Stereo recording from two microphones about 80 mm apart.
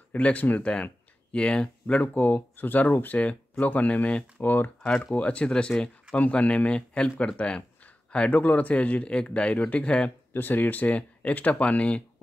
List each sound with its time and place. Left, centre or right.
0.1 s speech: centre
10.3 s speech: left